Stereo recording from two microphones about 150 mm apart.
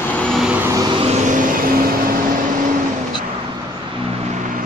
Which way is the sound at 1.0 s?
60° right (ahead or behind).